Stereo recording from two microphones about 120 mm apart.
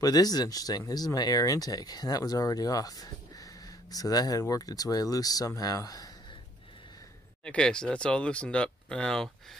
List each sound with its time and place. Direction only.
0.0 s speech: 30° left (ahead or behind)
7.4 s speech: 5° left (ahead or behind)